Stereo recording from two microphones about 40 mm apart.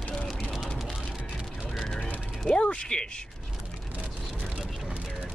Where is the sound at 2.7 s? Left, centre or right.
Left.